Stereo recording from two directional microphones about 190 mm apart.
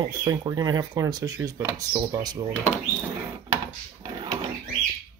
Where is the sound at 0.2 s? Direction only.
20° right (ahead or behind).